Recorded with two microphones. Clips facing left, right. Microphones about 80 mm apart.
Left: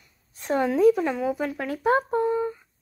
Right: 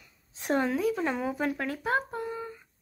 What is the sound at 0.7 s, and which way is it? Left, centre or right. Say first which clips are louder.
Speech: left 10 dB; left.